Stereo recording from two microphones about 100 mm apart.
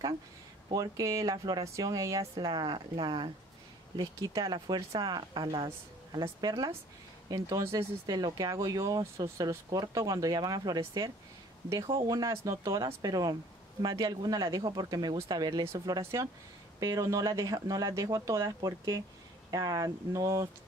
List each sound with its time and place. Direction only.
0.7 s speech: 35° right (ahead or behind)
6.4 s speech: 40° right (ahead or behind)
11.9 s speech: 40° right (ahead or behind)
16.0 s speech: 30° right (ahead or behind)